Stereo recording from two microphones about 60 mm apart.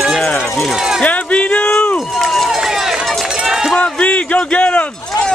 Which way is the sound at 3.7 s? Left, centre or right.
Centre.